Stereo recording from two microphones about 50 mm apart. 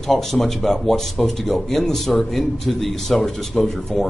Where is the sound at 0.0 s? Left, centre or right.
Centre.